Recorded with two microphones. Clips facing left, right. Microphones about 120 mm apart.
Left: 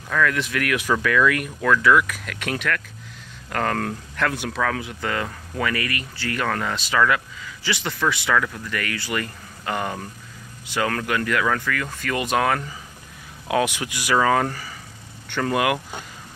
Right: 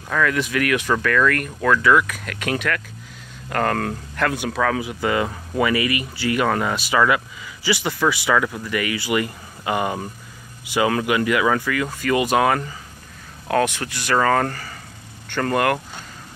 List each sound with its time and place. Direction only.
0.1 s speech: 5° right (ahead or behind)
13.5 s speech: 5° left (ahead or behind)